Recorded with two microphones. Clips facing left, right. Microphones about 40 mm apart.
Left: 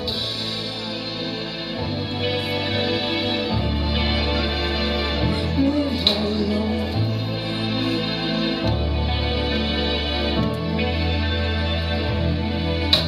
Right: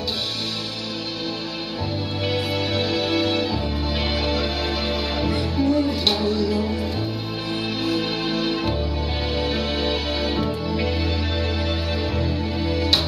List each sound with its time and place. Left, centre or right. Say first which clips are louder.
2.2 s music: even; left
5.2 s music: left 1 dB; left
12.6 s music: right 1 dB; left